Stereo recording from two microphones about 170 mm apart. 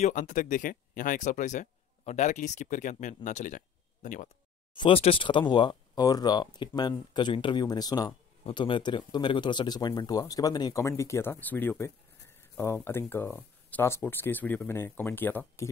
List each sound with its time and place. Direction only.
0.0 s speech: 50° left (ahead or behind)
4.7 s speech: 30° left (ahead or behind); by 15.7 s 15° left (ahead or behind)